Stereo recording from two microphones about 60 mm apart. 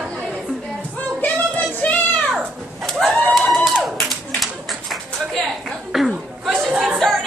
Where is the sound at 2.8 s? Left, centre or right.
Centre.